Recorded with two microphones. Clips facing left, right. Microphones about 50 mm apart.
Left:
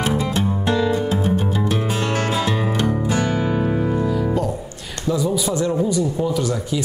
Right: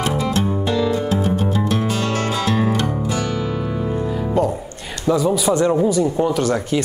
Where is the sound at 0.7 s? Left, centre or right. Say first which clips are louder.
Left 2 dB; centre.